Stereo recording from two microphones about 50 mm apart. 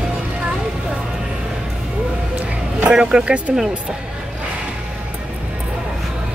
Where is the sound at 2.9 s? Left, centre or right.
Centre.